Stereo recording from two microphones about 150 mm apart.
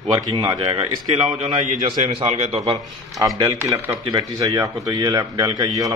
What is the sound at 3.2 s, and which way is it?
Speech, 20° right (ahead or behind).